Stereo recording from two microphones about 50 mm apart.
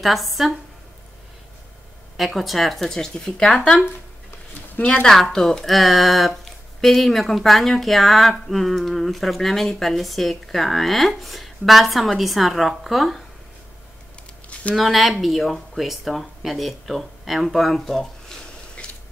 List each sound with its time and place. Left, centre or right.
0.0 s a woman's voice: centre
2.1 s speech: centre
4.7 s speech: left
5.0 s a woman's voice: centre
14.5 s a sound: left
14.8 s a woman's voice: centre
18.8 s a sound: centre